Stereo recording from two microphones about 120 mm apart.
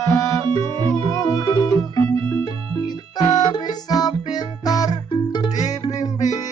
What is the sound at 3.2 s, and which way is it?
Music, 35° left (ahead or behind).